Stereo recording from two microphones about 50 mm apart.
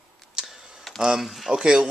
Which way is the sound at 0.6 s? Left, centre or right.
Centre.